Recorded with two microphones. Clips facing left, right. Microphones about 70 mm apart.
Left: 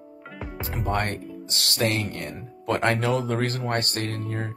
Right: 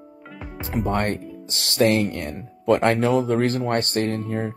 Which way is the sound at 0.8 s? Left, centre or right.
Right.